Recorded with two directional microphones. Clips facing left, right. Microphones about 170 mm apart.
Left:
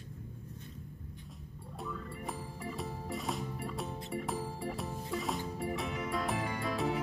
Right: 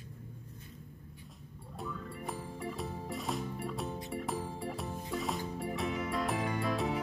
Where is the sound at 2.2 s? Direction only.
Centre (ahead or behind).